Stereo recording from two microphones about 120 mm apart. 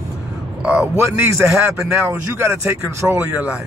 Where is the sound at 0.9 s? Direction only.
20° right (ahead or behind).